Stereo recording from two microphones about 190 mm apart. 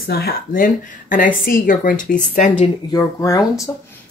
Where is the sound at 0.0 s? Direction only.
55° left (ahead or behind).